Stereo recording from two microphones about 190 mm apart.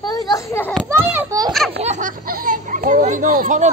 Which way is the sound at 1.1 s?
20° right (ahead or behind).